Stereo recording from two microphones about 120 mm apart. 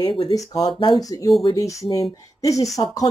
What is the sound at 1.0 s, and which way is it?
Speech, 30° left (ahead or behind).